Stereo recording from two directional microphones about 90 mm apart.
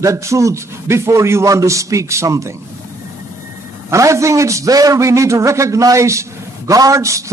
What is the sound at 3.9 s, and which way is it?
Speech, 35° right (ahead or behind).